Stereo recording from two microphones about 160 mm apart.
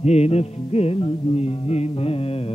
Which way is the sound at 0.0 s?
40° left (ahead or behind).